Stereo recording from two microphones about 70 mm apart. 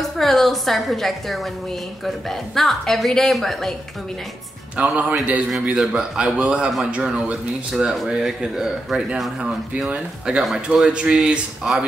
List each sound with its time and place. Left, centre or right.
0.0 s speech: centre
4.7 s a man's voice: centre